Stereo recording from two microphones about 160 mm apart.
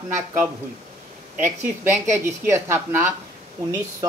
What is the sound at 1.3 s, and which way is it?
Speech, 15° right (ahead or behind).